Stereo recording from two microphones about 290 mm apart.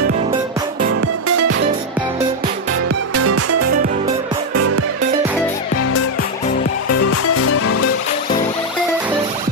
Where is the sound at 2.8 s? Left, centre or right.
Right.